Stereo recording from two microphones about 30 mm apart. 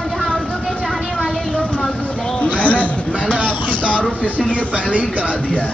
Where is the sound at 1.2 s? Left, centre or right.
Left.